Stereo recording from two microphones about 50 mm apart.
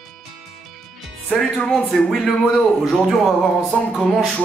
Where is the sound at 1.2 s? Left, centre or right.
Centre.